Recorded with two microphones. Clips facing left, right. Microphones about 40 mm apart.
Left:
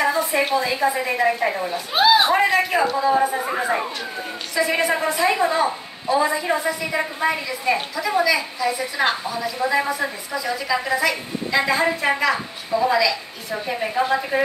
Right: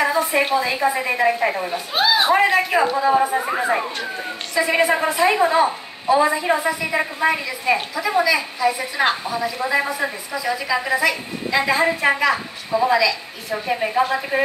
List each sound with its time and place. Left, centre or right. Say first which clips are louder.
0.5 s a woman's voice: right 1 dB; centre
2.0 s speech: left 1 dB; centre
2.5 s a woman's voice: right 1 dB; centre